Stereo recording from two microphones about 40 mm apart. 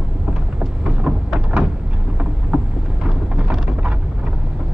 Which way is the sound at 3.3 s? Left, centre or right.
Right.